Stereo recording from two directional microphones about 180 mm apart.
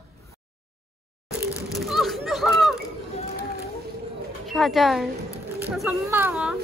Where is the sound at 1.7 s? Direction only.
Centre (ahead or behind).